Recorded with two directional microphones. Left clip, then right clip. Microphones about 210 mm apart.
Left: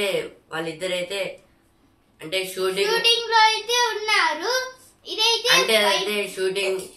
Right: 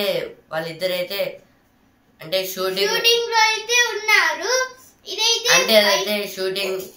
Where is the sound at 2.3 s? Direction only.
Centre (ahead or behind).